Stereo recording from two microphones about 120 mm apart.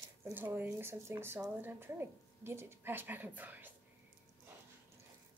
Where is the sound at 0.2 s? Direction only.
20° right (ahead or behind).